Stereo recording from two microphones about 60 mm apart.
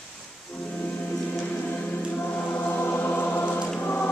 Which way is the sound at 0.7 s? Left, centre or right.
Left.